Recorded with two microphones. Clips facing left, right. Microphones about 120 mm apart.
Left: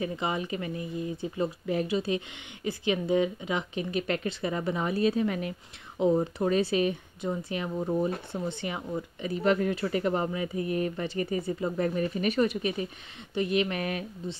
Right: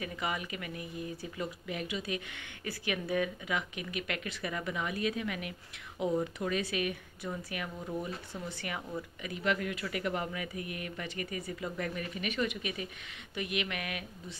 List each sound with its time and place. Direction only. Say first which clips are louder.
0.0 s speech: left 6 dB; 30° left (ahead or behind)
8.3 s speech: left 7 dB; 25° left (ahead or behind)